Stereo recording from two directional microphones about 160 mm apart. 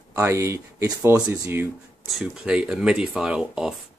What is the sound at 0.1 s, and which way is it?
Speech, 15° right (ahead or behind).